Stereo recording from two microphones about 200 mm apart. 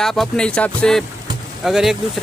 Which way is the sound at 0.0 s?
Centre (ahead or behind).